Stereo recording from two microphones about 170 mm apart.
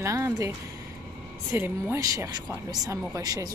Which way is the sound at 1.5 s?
15° right (ahead or behind).